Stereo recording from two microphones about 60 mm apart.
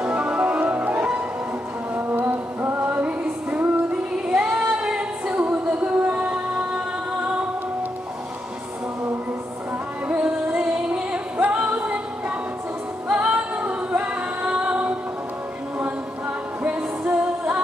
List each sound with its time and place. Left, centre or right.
0.0 s music: right
10.0 s music: right
13.1 s music: centre